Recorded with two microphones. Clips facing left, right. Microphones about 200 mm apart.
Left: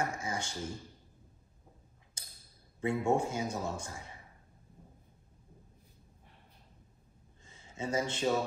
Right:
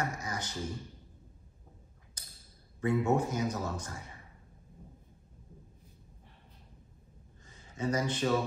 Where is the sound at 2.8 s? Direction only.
25° left (ahead or behind).